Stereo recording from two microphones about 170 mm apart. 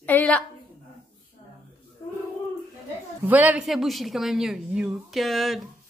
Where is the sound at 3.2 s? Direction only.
10° right (ahead or behind).